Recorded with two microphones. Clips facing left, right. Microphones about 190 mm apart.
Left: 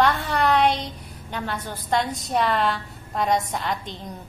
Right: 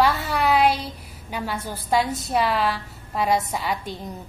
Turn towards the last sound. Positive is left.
turn(degrees=-5)  # may be behind; listen again after turning